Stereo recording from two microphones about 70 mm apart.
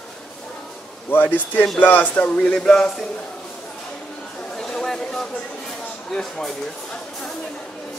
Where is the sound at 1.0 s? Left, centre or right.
Left; by 3.0 s centre.